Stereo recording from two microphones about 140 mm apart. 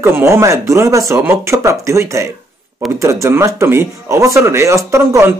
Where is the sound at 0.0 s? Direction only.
20° right (ahead or behind).